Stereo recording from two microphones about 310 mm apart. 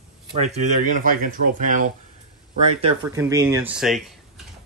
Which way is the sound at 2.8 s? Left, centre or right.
Centre.